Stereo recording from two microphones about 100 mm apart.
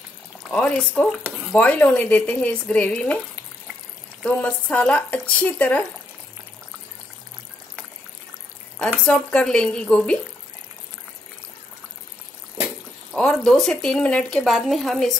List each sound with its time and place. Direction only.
0.5 s speech: 10° left (ahead or behind)
4.2 s speech: 15° left (ahead or behind)
8.7 s speech: 10° left (ahead or behind)
13.1 s speech: 5° left (ahead or behind)